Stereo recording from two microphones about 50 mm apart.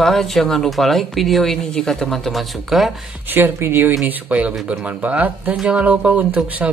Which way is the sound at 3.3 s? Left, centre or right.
Right.